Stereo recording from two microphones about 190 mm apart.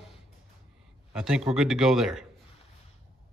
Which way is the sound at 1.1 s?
5° right (ahead or behind).